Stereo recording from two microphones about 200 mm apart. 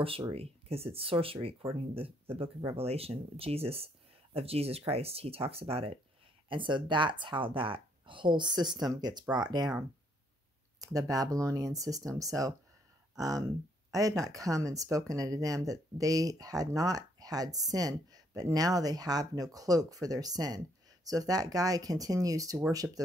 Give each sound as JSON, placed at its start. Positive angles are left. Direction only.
{"t": 0.0, "sound": "speech", "side_deg": -30}